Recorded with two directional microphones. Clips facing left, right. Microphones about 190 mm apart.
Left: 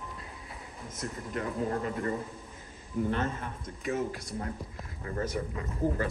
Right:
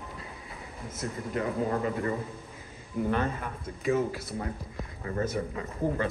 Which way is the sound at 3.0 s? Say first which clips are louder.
Right 4 dB; 55° right (ahead or behind).